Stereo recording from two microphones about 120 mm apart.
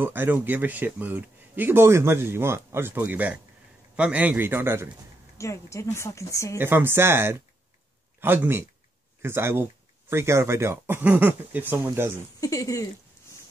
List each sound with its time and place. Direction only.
0.0 s speech: 15° right (ahead or behind)
5.4 s speech: 25° left (ahead or behind)
6.6 s speech: 20° right (ahead or behind)
12.4 s speech: 25° left (ahead or behind)